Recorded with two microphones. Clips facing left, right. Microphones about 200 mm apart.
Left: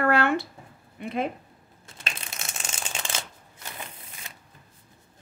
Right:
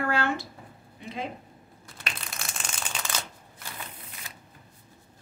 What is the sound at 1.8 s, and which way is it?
Shuffling cards, 25° left (ahead or behind).